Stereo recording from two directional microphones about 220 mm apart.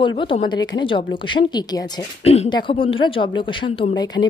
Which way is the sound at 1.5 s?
20° left (ahead or behind).